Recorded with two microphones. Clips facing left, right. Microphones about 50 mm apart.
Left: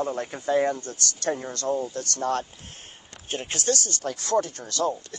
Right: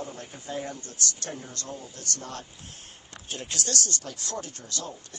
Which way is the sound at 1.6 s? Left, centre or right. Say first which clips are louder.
Left 12 dB; left.